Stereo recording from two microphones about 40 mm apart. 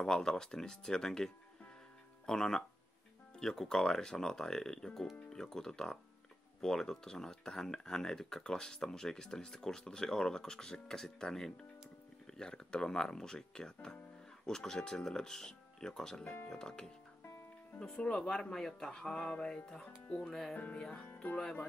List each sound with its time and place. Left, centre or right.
0.0 s speech: centre
18.4 s speech: centre